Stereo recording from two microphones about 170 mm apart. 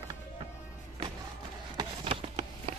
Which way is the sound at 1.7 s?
35° right (ahead or behind).